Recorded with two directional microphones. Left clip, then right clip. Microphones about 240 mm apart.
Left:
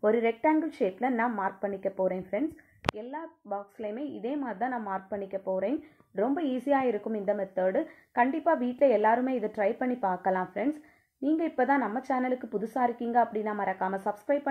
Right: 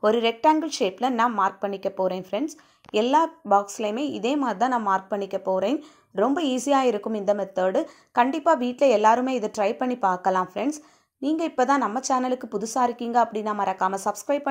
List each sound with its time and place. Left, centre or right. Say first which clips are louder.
0.0 s speech: right 5 dB; right